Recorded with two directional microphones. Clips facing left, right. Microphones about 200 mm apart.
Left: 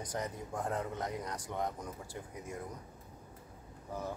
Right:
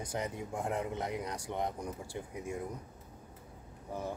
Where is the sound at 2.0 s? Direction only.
25° right (ahead or behind).